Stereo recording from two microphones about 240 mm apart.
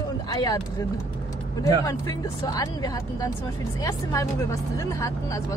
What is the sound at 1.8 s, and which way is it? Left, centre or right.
Speech, centre.